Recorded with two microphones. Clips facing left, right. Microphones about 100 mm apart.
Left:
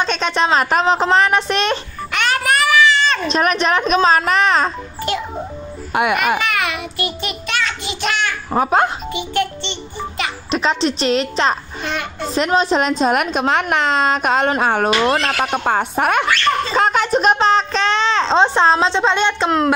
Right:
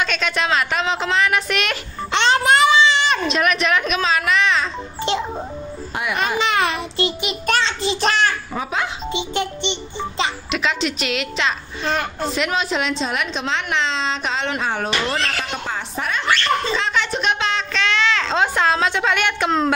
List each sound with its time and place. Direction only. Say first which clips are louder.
0.0 s speech: left 4 dB; 35° left (ahead or behind)
2.1 s baby cry: right 2 dB; 25° right (ahead or behind)
3.3 s speech: left 2 dB; 35° left (ahead or behind)
6.4 s a child's voice: right 1 dB; 30° right (ahead or behind)
8.5 s a woman's voice: left 9 dB; 50° left (ahead or behind)
9.1 s a child's voice: left 3 dB; 20° right (ahead or behind)
10.5 s speech: left 4 dB; 35° left (ahead or behind)
11.8 s a child's voice: right 2 dB; 40° right (ahead or behind)
12.4 s a woman's voice: left 7 dB; 35° left (ahead or behind); by 16.3 s 60° left (ahead or behind)
16.7 s a woman's voice: left 6 dB; 45° left (ahead or behind); by 19.5 s 25° left (ahead or behind)